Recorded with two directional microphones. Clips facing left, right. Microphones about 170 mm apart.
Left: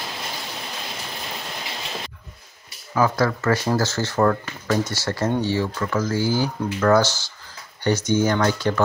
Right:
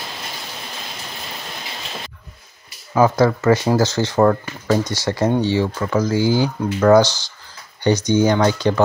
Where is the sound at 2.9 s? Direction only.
20° right (ahead or behind).